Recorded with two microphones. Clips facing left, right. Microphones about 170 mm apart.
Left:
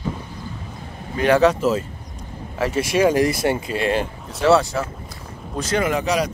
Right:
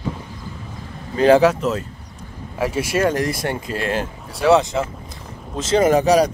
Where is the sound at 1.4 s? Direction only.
Centre (ahead or behind).